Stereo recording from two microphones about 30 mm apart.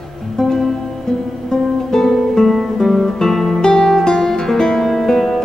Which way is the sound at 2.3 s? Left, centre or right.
Centre.